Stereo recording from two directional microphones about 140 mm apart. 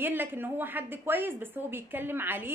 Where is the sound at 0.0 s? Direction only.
15° right (ahead or behind).